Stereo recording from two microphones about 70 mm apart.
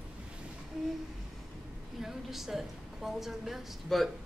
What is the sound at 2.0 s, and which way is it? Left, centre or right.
A woman's voice, centre.